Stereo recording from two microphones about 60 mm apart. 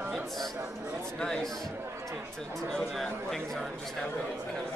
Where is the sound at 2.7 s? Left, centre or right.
Centre.